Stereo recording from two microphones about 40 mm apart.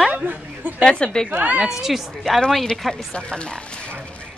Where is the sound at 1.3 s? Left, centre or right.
Right.